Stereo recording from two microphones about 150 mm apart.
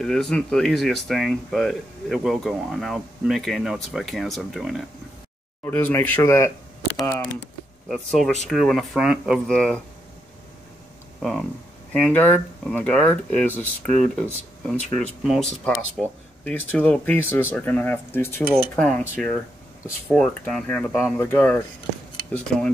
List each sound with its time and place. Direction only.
0.0 s speech: 5° left (ahead or behind)
5.7 s speech: 15° left (ahead or behind)
7.9 s speech: centre (ahead or behind)
11.1 s speech: centre (ahead or behind)
15.2 s speech: centre (ahead or behind)
16.0 s speech: 10° left (ahead or behind)